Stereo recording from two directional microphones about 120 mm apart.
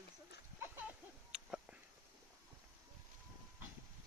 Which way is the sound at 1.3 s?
10° right (ahead or behind).